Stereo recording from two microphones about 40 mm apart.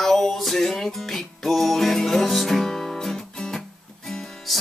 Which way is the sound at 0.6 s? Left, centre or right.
Centre.